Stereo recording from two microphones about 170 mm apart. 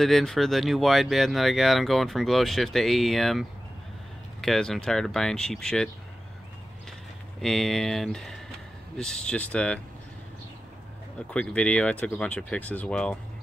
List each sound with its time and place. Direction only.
0.0 s speech: centre (ahead or behind)
7.4 s speech: centre (ahead or behind)
11.2 s speech: 5° left (ahead or behind)